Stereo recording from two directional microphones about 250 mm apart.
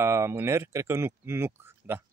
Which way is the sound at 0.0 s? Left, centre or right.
Centre.